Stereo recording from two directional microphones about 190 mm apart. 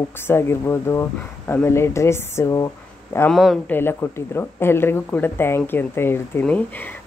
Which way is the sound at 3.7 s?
10° left (ahead or behind).